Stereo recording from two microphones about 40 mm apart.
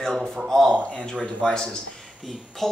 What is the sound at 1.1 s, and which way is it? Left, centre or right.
Speech, left.